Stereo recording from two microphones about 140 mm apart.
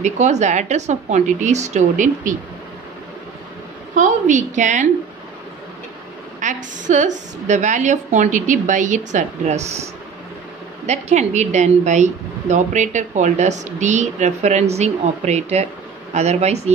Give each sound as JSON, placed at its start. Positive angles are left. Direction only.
{"t": 0.0, "sound": "a woman's voice", "side_deg": -55}
{"t": 3.9, "sound": "a woman's voice", "side_deg": -60}
{"t": 6.4, "sound": "a woman's voice", "side_deg": -60}
{"t": 10.9, "sound": "a woman's voice", "side_deg": -55}